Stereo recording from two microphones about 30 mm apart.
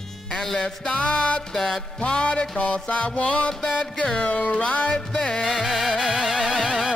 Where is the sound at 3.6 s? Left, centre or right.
Centre.